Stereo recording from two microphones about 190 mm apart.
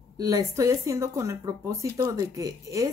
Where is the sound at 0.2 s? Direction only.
15° right (ahead or behind).